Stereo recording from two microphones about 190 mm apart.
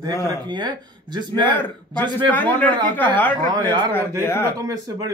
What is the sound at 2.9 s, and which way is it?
Speech, 10° left (ahead or behind).